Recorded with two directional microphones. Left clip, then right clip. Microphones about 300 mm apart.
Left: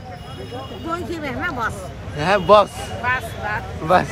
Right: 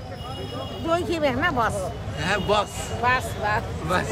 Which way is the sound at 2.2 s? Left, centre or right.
Centre.